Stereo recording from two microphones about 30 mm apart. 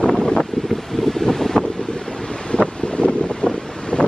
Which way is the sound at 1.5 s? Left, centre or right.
Left.